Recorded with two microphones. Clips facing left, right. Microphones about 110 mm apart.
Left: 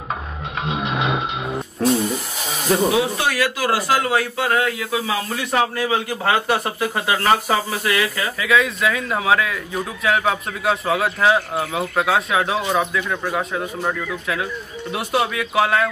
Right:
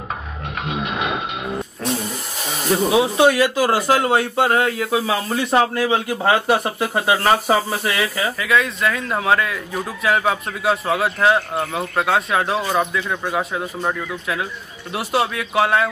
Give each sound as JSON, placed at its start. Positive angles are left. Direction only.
{"t": 1.8, "sound": "a sound", "side_deg": 0}
{"t": 2.9, "sound": "speech", "side_deg": -20}
{"t": 8.4, "sound": "speech", "side_deg": 0}